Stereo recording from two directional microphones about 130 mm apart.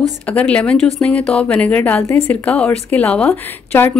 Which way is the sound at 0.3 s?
10° left (ahead or behind).